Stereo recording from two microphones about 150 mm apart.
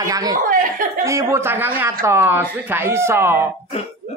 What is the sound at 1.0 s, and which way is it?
Speech, 20° right (ahead or behind).